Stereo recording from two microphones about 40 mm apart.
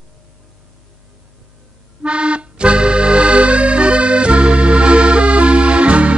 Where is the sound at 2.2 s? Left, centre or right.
Right.